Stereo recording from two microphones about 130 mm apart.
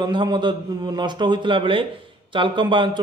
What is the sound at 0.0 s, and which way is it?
A man's voice, 35° right (ahead or behind).